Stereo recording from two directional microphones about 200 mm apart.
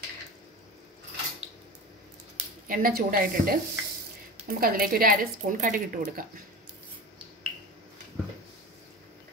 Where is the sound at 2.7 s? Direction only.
45° right (ahead or behind).